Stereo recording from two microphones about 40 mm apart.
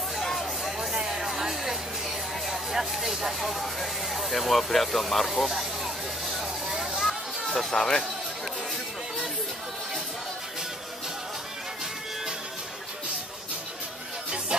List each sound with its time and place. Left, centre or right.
0.2 s a sound: centre
0.7 s music: centre
6.2 s vehicle: centre
7.0 s a sound: centre
7.7 s speech: centre
14.5 s music: right